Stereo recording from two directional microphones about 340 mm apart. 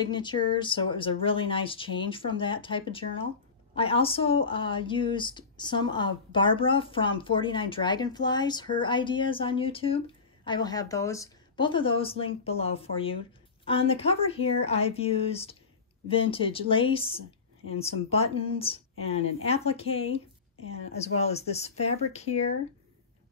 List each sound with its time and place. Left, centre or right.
0.0 s speech: centre